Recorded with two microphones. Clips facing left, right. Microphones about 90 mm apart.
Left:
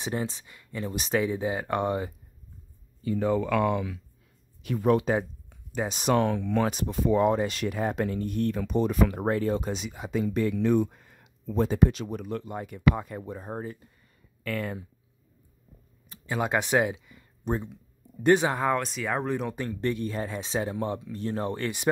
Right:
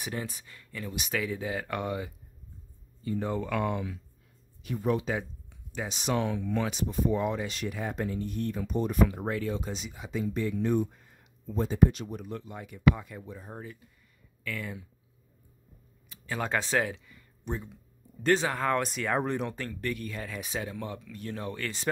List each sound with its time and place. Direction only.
0.0 s speech: 25° left (ahead or behind)
3.0 s speech: 90° left
4.6 s speech: 75° left (ahead or behind)
5.0 s speech: 45° left (ahead or behind)
6.9 s speech: 90° left
7.4 s speech: 65° left (ahead or behind); by 9.2 s 90° left
9.2 s speech: 45° left (ahead or behind)
9.6 s speech: 65° left (ahead or behind); by 12.4 s 85° left
12.4 s speech: 50° left (ahead or behind)
16.3 s speech: 15° left (ahead or behind)
18.2 s speech: 20° left (ahead or behind)
18.7 s speech: centre (ahead or behind)
19.5 s speech: 20° left (ahead or behind)